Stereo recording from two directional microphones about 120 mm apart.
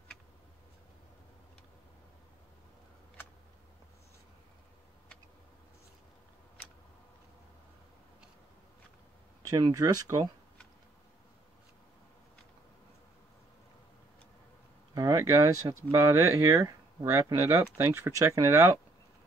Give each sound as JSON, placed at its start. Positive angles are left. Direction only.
{"t": 9.5, "sound": "speech", "side_deg": -30}
{"t": 15.0, "sound": "speech", "side_deg": -25}